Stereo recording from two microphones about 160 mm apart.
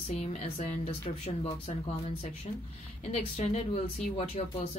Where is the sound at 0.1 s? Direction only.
45° left (ahead or behind).